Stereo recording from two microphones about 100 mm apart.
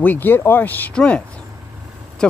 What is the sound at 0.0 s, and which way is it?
Speech, 20° left (ahead or behind).